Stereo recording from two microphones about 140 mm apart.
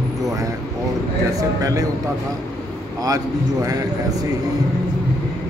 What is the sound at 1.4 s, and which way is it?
Speech, 25° right (ahead or behind).